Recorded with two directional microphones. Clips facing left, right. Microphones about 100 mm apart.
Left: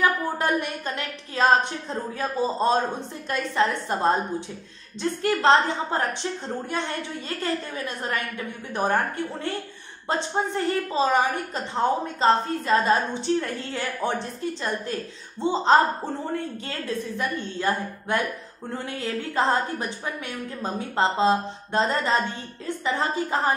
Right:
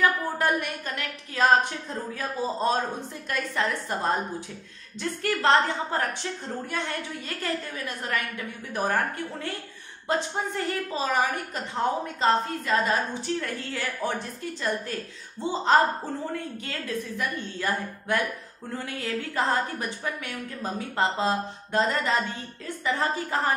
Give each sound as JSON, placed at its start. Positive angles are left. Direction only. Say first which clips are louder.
{"t": 0.0, "sound": "a woman's voice", "louder": "left 1 dB", "side_deg": 20}
{"t": 7.2, "sound": "a woman's voice", "louder": "left 4 dB", "side_deg": 30}